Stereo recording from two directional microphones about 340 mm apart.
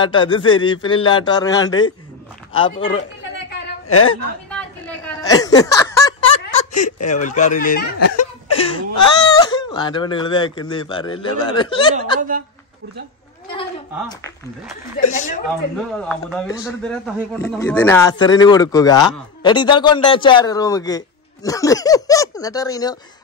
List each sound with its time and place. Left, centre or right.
0.0 s a man's voice: centre
3.3 s a sound: left
4.5 s a sound: centre
7.1 s a man's voice: left
12.2 s a woman's voice: right
13.5 s a man's voice: centre
16.0 s a man's voice: centre